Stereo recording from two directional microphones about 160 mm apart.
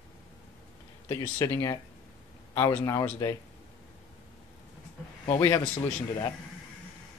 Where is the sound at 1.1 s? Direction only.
20° left (ahead or behind).